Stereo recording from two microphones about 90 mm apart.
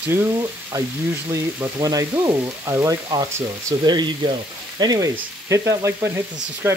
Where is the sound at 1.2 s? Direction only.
40° right (ahead or behind).